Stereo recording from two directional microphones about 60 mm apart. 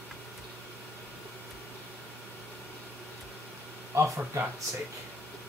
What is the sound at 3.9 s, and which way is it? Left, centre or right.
Speech, right.